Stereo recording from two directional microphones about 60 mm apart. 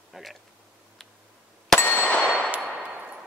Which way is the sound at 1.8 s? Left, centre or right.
Left.